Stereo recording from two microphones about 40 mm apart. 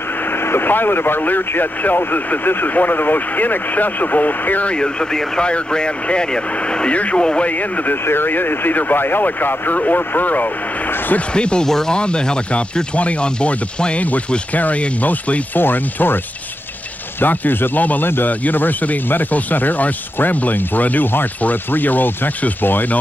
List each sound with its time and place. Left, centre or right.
0.2 s speech: left
4.6 s speech: left
7.4 s speech: left
8.0 s speech: left
11.1 s speech: left
11.6 s speech: centre; by 15.4 s left
15.5 s speech: left
17.2 s speech: left